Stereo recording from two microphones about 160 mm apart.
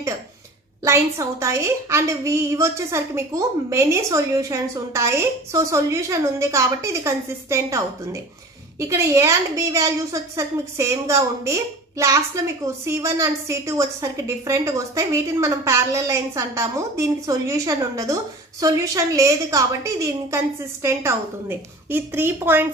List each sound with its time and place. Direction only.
0.8 s a woman's voice: 20° right (ahead or behind)